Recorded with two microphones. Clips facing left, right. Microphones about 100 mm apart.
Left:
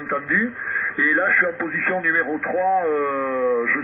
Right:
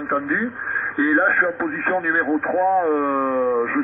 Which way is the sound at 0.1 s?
35° right (ahead or behind).